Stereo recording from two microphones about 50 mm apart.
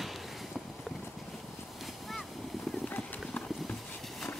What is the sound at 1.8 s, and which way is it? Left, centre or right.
Vehicle, centre.